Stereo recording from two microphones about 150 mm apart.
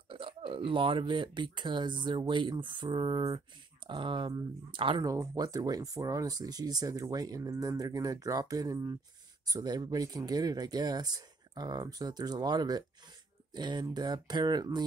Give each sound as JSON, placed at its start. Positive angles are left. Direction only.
{"t": 0.1, "sound": "speech", "side_deg": -35}